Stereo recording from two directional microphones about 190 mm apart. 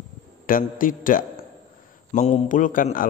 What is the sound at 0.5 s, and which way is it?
A man's voice, 45° left (ahead or behind).